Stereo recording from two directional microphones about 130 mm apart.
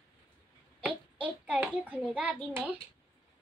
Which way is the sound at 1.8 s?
10° right (ahead or behind).